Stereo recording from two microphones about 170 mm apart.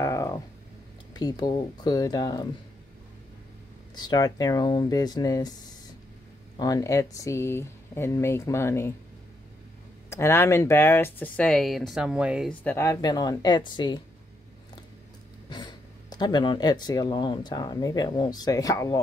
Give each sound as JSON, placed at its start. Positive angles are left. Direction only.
{"t": 0.0, "sound": "a sound", "side_deg": 15}
{"t": 1.1, "sound": "speech", "side_deg": 25}
{"t": 3.9, "sound": "speech", "side_deg": 25}
{"t": 6.5, "sound": "speech", "side_deg": 20}
{"t": 10.0, "sound": "speech", "side_deg": 15}
{"t": 12.6, "sound": "speech", "side_deg": 15}
{"t": 15.5, "sound": "speech", "side_deg": 25}